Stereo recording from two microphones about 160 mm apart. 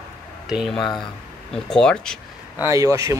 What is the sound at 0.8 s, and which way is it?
Speech, 30° left (ahead or behind).